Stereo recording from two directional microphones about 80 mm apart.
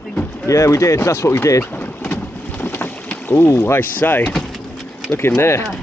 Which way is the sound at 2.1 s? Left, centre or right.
Left.